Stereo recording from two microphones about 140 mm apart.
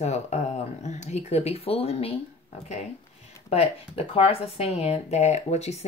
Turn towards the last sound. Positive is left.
turn(degrees=50)  # may be behind; listen again after turning